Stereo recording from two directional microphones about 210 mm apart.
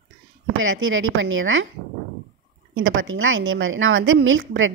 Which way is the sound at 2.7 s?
70° right (ahead or behind).